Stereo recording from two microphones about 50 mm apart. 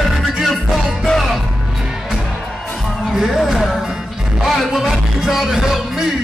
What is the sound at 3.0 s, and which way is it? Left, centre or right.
Music, centre.